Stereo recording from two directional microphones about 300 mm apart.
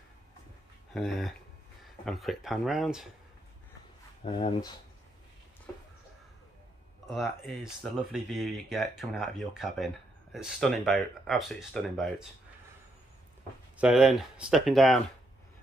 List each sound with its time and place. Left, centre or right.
0.9 s speech: centre
4.2 s speech: centre
7.1 s speech: centre
13.7 s speech: centre